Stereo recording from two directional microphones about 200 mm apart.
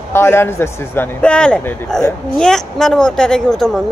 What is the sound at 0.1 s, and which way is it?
Speech, 10° left (ahead or behind).